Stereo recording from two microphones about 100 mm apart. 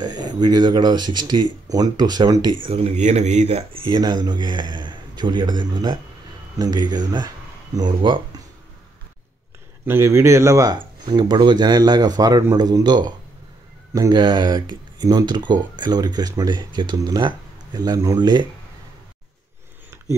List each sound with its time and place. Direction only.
0.0 s speech: 45° right (ahead or behind)
2.6 s speech: 75° right (ahead or behind)
3.4 s speech: 90° right
3.8 s speech: 50° right (ahead or behind)
9.8 s speech: 25° right (ahead or behind)
10.7 s speech: 45° right (ahead or behind)
14.1 s speech: 45° right (ahead or behind)
18.2 s speech: 45° right (ahead or behind)